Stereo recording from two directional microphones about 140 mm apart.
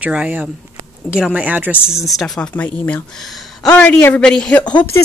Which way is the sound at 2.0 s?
Centre (ahead or behind).